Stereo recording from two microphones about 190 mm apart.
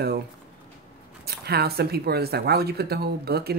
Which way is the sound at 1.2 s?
55° right (ahead or behind).